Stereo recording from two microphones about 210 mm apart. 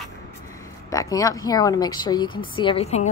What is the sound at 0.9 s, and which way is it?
A woman's voice, 15° left (ahead or behind).